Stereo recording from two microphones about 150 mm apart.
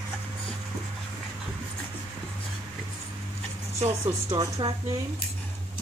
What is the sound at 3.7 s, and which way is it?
A woman's voice, 35° right (ahead or behind).